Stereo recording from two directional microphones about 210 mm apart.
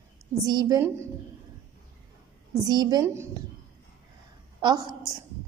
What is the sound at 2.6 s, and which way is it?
Speech, 20° right (ahead or behind).